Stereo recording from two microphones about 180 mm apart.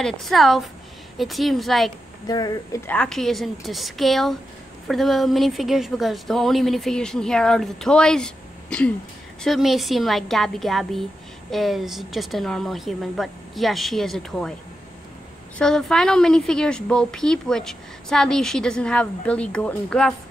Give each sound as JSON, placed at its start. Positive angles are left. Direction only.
{"t": 0.0, "sound": "a woman's voice", "side_deg": 0}
{"t": 2.2, "sound": "speech", "side_deg": 20}
{"t": 2.9, "sound": "a woman's voice", "side_deg": 5}
{"t": 15.5, "sound": "a woman's voice", "side_deg": 5}